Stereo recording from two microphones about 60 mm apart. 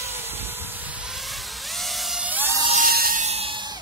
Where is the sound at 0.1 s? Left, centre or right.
Right.